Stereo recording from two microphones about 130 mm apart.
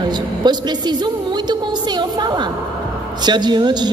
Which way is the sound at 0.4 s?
35° right (ahead or behind).